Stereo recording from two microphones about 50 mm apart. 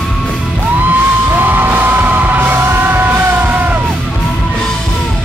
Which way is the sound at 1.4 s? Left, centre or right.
Right.